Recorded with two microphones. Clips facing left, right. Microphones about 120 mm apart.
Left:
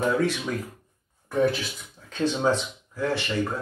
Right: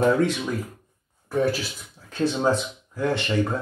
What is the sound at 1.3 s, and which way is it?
Speech, 5° right (ahead or behind).